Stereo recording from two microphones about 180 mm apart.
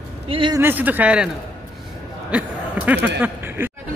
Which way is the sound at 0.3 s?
25° right (ahead or behind).